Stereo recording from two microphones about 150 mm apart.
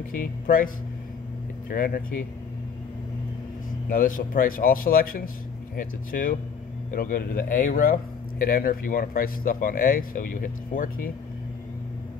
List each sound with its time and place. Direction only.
0.1 s speech: 70° left (ahead or behind)
1.7 s speech: 70° left (ahead or behind)
3.9 s speech: 65° left (ahead or behind)